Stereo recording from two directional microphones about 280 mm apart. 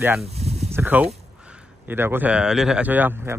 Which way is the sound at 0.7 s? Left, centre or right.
Centre.